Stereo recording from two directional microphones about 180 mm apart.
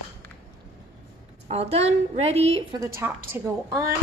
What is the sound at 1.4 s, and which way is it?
A woman's voice, 35° right (ahead or behind).